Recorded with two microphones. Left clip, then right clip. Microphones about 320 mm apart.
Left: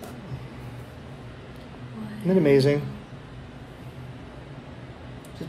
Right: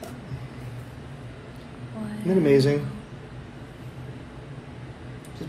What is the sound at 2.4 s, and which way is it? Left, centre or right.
Speech, left.